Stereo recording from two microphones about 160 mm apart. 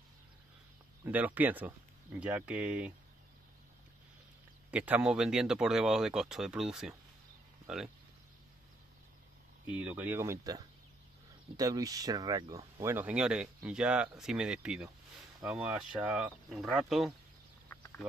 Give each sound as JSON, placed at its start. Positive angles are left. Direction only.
{"t": 1.0, "sound": "speech", "side_deg": -10}
{"t": 4.6, "sound": "speech", "side_deg": -10}
{"t": 9.8, "sound": "speech", "side_deg": -10}
{"t": 12.8, "sound": "speech", "side_deg": -10}
{"t": 17.6, "sound": "a sound", "side_deg": 10}